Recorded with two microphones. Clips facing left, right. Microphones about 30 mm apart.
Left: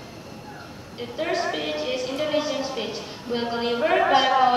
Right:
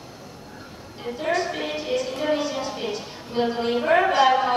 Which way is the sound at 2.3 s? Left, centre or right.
Centre.